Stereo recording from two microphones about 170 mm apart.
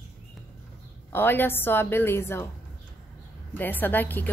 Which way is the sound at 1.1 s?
10° left (ahead or behind).